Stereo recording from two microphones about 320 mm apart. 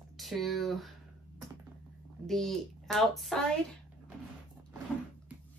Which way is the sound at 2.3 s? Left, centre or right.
Centre.